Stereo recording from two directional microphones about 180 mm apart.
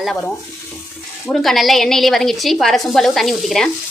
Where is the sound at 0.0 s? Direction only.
Centre (ahead or behind).